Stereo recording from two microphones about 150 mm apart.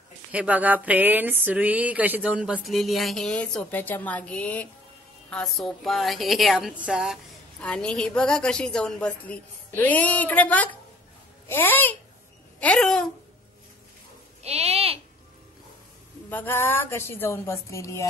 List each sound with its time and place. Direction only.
0.3 s a woman's voice: 10° right (ahead or behind)
7.6 s a woman's voice: 5° left (ahead or behind)
14.4 s speech: 45° right (ahead or behind)
16.3 s a woman's voice: 15° left (ahead or behind)